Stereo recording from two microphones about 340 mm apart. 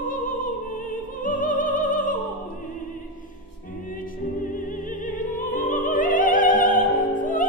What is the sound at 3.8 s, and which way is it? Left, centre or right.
Opera, left.